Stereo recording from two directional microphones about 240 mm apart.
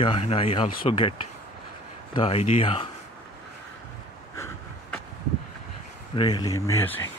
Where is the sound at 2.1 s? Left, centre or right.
Left.